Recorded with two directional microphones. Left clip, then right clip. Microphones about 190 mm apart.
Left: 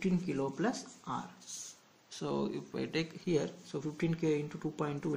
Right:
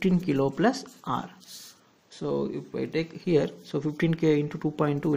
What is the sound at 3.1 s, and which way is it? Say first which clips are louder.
Speech: right 13 dB; 30° right (ahead or behind).